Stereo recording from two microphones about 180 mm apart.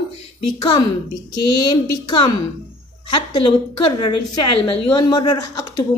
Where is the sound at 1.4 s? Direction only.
25° left (ahead or behind).